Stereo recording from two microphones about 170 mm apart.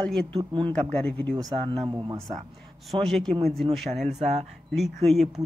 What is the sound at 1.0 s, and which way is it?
Speech, 5° left (ahead or behind).